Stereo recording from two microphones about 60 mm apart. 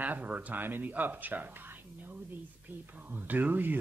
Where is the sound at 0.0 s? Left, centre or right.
Right.